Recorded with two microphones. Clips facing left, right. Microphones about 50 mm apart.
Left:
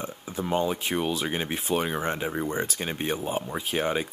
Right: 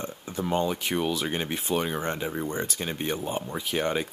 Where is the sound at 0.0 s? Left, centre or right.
Centre.